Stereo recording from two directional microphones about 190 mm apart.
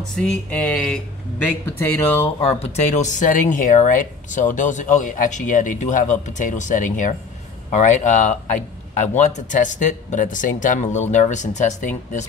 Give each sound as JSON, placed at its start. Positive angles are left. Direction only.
{"t": 0.1, "sound": "speech", "side_deg": 5}
{"t": 2.2, "sound": "speech", "side_deg": 30}